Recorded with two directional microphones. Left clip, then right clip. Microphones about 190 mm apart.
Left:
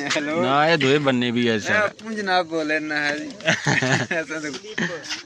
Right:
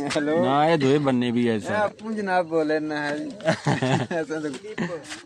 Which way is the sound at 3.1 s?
15° right (ahead or behind).